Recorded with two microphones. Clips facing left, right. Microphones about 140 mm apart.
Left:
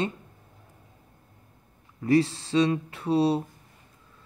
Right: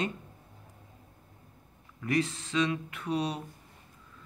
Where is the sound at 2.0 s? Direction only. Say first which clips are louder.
Left 8 dB; 30° left (ahead or behind).